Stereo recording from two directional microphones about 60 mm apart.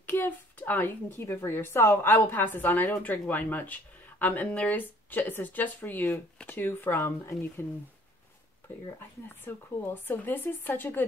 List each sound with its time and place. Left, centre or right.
0.0 s a woman's voice: left
7.0 s speech: left
9.4 s a woman's voice: left